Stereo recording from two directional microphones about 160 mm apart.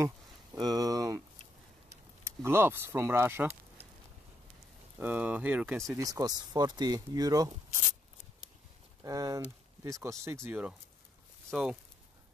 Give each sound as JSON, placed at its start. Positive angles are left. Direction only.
{"t": 0.0, "sound": "speech", "side_deg": -25}
{"t": 4.9, "sound": "speech", "side_deg": -10}
{"t": 5.9, "sound": "speech", "side_deg": -20}
{"t": 9.0, "sound": "speech", "side_deg": -20}